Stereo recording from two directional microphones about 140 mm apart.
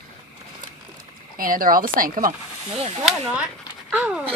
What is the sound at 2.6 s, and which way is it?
Speech, 45° right (ahead or behind).